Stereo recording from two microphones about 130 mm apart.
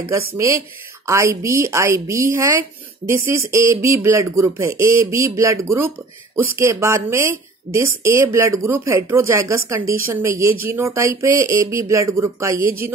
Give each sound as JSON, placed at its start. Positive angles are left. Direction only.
{"t": 1.0, "sound": "a woman's voice", "side_deg": -20}